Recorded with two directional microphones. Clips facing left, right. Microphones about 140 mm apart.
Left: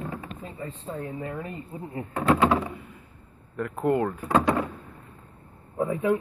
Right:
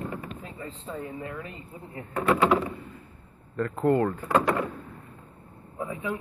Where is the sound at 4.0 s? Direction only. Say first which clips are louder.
Even; centre (ahead or behind).